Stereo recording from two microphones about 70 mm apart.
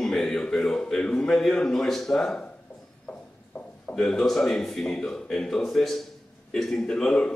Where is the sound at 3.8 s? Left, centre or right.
Centre.